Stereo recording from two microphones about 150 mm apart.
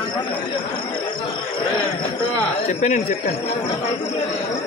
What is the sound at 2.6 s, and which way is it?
Speech, 55° left (ahead or behind).